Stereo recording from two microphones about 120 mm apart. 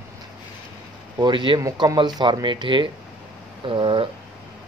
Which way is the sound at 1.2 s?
40° right (ahead or behind).